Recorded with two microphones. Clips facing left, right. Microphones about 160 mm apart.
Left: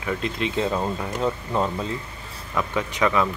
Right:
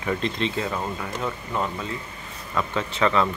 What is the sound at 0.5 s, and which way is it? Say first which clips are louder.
Speech: left 4 dB; 20° left (ahead or behind).